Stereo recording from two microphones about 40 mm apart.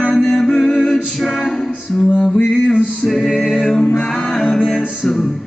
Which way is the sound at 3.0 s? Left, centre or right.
Centre.